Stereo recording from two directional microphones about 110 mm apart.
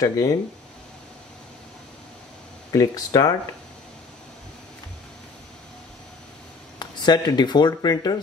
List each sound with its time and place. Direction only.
0.0 s speech: 30° left (ahead or behind)
2.7 s speech: 35° left (ahead or behind)
6.8 s speech: 40° left (ahead or behind)